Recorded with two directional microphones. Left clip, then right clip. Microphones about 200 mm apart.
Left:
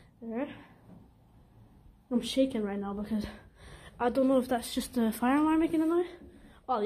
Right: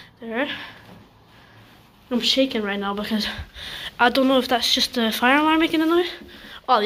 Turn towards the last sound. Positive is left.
turn(degrees=0)  # may be behind; listen again after turning